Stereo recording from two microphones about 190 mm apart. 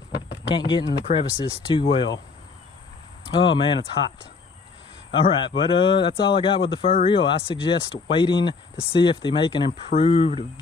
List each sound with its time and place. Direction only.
0.6 s speech: 25° left (ahead or behind)
3.3 s speech: 25° left (ahead or behind)
5.1 s speech: 25° left (ahead or behind)